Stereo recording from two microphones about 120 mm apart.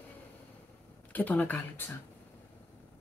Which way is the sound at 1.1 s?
15° left (ahead or behind).